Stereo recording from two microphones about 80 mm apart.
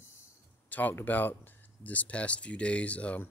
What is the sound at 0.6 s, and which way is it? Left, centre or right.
Speech, left.